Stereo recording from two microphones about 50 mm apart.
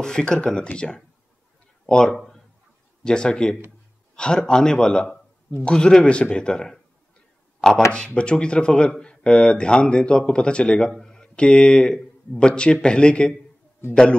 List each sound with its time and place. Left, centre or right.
0.0 s a man's voice: centre
2.1 s a sound: centre
3.0 s a man's voice: centre
7.9 s speech: left